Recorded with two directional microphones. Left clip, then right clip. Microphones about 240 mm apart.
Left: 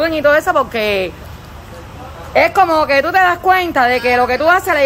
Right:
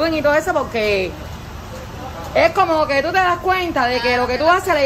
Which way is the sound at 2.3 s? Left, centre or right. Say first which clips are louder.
Left 4 dB; centre.